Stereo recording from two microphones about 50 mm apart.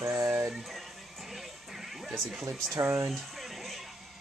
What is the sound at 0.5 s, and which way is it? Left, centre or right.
Music, centre.